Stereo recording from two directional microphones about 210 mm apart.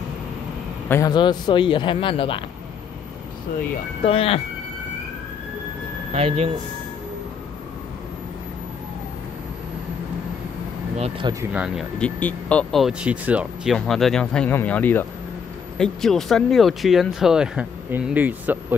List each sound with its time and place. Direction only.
0.8 s speech: 15° left (ahead or behind)
4.0 s speech: 25° left (ahead or behind)
6.1 s speech: 30° right (ahead or behind)
11.0 s speech: 25° right (ahead or behind)
11.5 s speech: 5° right (ahead or behind)